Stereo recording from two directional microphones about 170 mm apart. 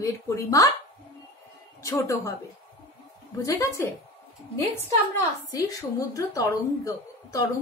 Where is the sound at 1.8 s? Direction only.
15° left (ahead or behind).